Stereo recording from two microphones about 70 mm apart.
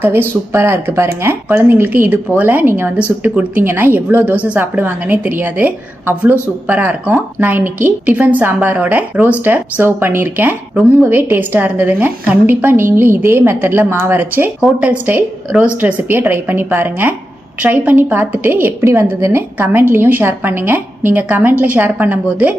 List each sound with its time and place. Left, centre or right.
0.0 s a woman's voice: right
3.0 s a woman's voice: centre
3.6 s a woman's voice: right
19.0 s a woman's voice: right